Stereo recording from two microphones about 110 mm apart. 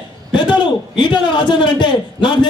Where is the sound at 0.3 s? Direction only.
45° left (ahead or behind).